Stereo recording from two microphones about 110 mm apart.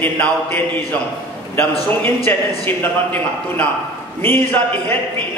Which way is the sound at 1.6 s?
20° left (ahead or behind).